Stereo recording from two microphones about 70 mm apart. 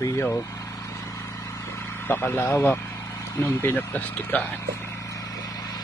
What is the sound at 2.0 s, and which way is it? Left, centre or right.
Speech, left.